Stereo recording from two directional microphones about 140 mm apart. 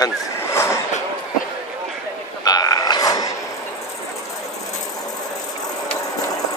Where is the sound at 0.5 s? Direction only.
20° left (ahead or behind).